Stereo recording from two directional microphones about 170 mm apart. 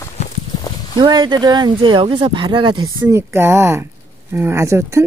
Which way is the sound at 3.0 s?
15° right (ahead or behind).